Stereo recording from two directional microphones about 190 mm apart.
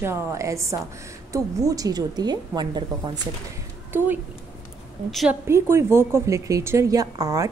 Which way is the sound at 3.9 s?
10° right (ahead or behind).